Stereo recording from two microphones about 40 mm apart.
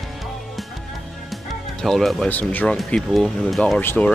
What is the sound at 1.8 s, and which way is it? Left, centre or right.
Music, centre.